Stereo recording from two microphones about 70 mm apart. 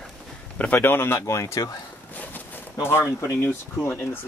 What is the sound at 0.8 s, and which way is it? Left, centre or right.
Speech, left.